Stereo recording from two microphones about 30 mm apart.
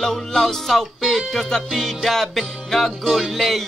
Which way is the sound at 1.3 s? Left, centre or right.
Centre.